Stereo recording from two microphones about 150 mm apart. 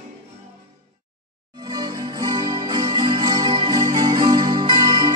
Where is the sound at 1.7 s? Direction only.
25° right (ahead or behind).